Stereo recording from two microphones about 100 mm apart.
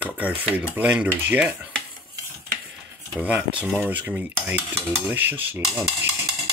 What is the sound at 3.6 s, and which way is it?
Speech, 15° right (ahead or behind).